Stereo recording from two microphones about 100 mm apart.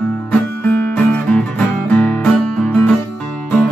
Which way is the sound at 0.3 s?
20° left (ahead or behind).